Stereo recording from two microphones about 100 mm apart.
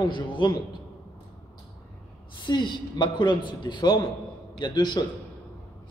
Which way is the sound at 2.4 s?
50° left (ahead or behind).